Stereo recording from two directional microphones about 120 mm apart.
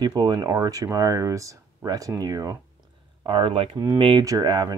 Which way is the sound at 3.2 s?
45° right (ahead or behind).